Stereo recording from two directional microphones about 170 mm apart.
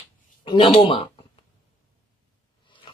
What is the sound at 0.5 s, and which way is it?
Speech, 30° left (ahead or behind).